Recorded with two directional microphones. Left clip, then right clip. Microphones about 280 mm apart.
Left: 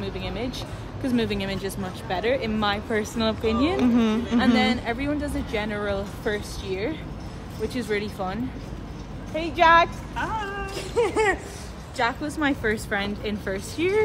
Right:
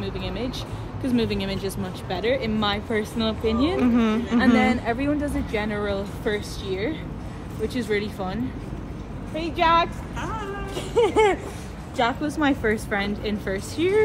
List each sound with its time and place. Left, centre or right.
0.0 s vehicle: centre
1.0 s speech: centre
4.6 s speech: centre
11.0 s speech: right; by 14.0 s centre